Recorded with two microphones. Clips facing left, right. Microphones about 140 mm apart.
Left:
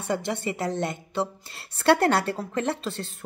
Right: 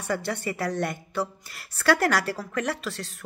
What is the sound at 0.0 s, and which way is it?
Speech, 20° left (ahead or behind).